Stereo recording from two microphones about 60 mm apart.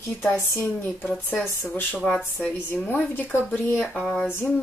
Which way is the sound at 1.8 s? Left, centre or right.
Left.